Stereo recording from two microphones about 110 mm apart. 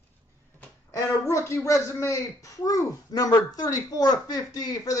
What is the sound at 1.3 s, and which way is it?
Speech, 25° left (ahead or behind).